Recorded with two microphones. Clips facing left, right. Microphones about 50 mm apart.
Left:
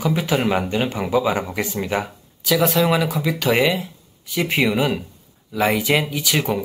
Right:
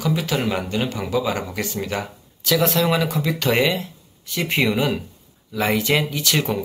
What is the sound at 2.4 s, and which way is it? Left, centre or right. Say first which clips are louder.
Speech: left 1 dB; centre.